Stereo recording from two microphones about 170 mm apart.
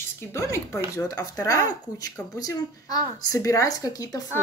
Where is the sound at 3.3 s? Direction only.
20° left (ahead or behind).